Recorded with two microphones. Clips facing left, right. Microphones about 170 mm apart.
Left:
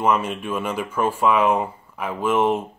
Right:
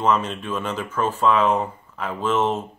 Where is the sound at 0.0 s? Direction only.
10° left (ahead or behind).